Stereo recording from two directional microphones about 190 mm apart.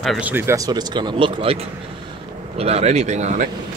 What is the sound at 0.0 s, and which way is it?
Speech, 5° right (ahead or behind).